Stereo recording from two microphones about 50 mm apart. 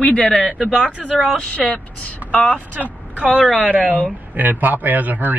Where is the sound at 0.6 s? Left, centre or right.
Centre; by 2.6 s left.